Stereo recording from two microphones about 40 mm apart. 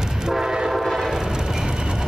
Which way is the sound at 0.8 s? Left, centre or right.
Centre.